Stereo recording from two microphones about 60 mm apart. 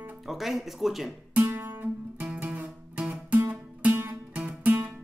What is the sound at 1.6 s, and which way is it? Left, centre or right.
Music, right.